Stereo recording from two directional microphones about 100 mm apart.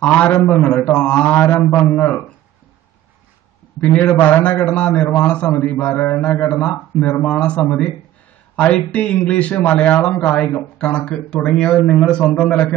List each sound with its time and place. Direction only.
0.0 s a man's voice: 15° left (ahead or behind)
3.8 s a man's voice: 10° left (ahead or behind)
8.9 s a man's voice: 10° left (ahead or behind)